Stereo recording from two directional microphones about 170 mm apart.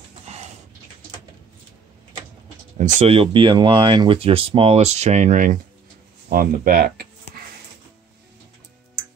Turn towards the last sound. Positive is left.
turn(degrees=-65)  # may be behind; listen again after turning